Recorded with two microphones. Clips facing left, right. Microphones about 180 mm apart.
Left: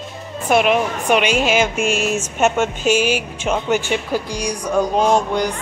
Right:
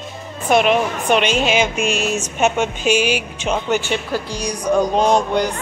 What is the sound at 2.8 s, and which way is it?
Speech, 45° left (ahead or behind).